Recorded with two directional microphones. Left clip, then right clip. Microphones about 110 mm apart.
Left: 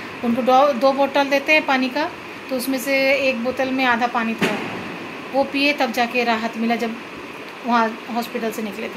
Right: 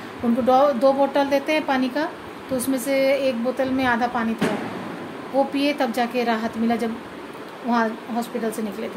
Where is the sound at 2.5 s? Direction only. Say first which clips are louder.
Left 1 dB; 25° right (ahead or behind).